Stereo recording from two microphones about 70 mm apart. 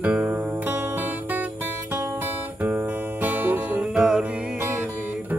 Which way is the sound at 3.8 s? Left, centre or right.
Centre.